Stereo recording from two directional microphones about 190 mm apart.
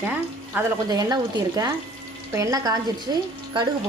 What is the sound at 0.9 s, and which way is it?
A woman's voice, 20° right (ahead or behind).